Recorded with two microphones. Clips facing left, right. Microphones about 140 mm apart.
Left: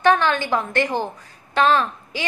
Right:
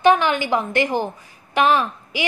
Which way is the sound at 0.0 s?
15° right (ahead or behind).